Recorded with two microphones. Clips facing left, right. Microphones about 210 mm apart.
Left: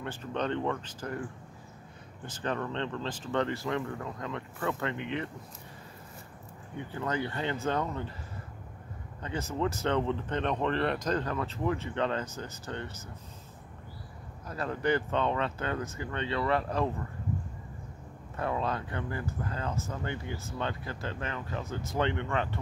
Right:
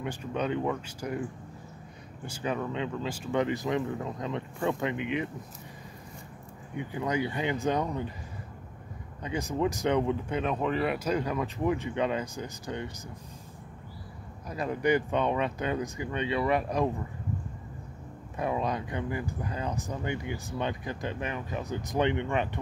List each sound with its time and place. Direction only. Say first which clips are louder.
0.0 s speech: right 2 dB; 10° right (ahead or behind)
2.2 s speech: right 2 dB; 10° right (ahead or behind)
6.8 s speech: right 3 dB; 15° right (ahead or behind)
9.2 s speech: right 3 dB; 15° right (ahead or behind)
14.5 s speech: right 3 dB; 15° right (ahead or behind)
18.3 s speech: right 2 dB; 15° right (ahead or behind)